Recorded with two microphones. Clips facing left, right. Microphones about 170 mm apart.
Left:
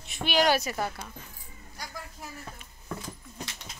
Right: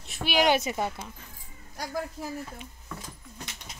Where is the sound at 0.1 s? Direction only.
10° right (ahead or behind).